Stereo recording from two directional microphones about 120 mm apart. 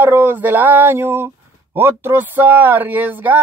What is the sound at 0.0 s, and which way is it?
Speech, 15° right (ahead or behind).